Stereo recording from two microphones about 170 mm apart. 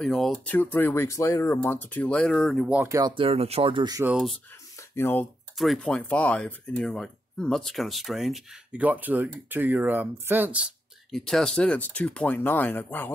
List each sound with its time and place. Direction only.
0.0 s speech: 5° left (ahead or behind)
2.8 s speech: 20° right (ahead or behind)
4.0 s speech: 5° right (ahead or behind)
4.9 s speech: 10° left (ahead or behind)